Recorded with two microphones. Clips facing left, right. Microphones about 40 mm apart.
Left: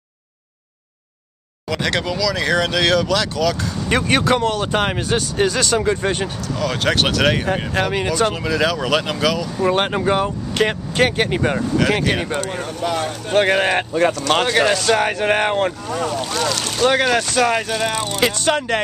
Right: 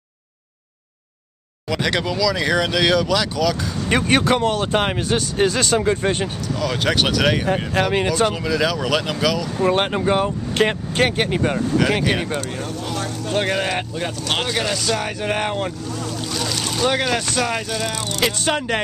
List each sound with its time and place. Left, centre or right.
1.7 s speech: centre
8.4 s speech: centre
11.2 s speech: centre
11.8 s speech: centre
12.4 s speech: left
13.4 s speech: left
15.9 s speech: left
16.5 s speech: centre
16.8 s speech: centre
18.3 s speech: centre